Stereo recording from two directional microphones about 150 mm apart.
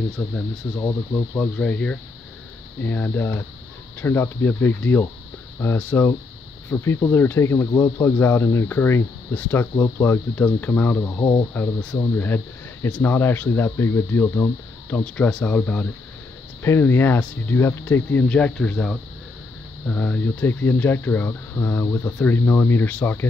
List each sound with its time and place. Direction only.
0.2 s speech: 15° left (ahead or behind)